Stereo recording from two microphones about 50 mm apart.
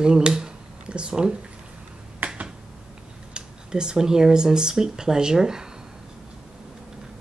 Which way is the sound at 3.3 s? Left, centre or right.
Centre.